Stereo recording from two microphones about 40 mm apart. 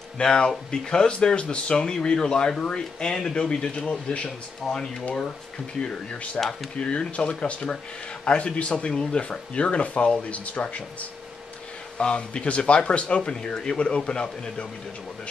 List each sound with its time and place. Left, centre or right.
0.2 s speech: centre
6.4 s speech: left
8.7 s speech: left